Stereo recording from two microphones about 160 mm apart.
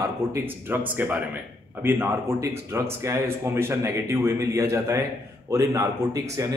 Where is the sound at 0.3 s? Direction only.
10° right (ahead or behind).